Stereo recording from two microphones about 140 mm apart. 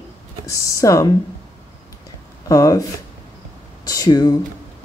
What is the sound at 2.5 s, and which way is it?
Speech, 25° left (ahead or behind).